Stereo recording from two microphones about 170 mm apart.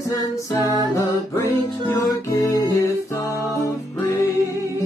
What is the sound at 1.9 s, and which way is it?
Music, 20° left (ahead or behind).